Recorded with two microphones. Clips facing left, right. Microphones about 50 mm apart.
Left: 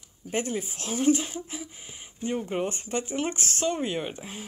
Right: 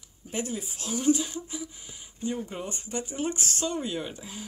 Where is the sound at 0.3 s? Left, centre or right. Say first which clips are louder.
Left 4 dB; left.